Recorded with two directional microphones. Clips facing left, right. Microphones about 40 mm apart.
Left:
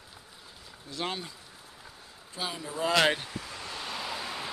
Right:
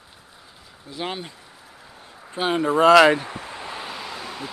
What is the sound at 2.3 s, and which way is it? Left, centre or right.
Speech, right.